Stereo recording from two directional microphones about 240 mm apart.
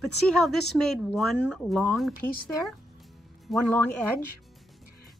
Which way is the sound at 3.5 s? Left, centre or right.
Centre.